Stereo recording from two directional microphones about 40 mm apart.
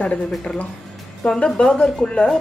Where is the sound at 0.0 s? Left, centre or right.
Left.